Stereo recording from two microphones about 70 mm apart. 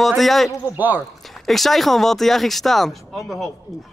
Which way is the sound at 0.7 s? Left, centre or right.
Right.